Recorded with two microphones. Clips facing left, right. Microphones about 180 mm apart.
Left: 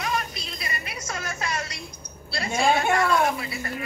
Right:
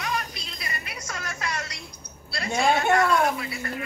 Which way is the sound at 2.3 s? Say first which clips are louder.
Left 1 dB; 25° left (ahead or behind).